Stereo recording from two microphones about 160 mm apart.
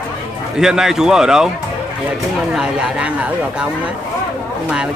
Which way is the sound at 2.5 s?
5° right (ahead or behind).